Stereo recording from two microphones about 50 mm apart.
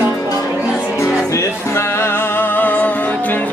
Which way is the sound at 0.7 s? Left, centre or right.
Left.